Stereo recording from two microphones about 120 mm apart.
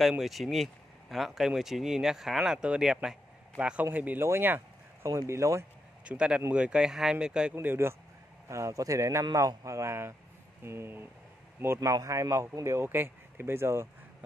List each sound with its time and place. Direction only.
0.2 s speech: centre (ahead or behind); by 5.7 s 25° right (ahead or behind)
6.0 s speech: 10° right (ahead or behind)
7.5 s speech: 20° right (ahead or behind)